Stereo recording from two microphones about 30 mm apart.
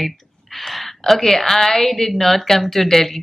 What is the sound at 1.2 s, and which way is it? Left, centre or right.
Speech, centre.